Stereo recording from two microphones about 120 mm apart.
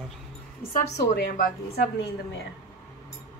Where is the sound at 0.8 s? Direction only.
75° left (ahead or behind).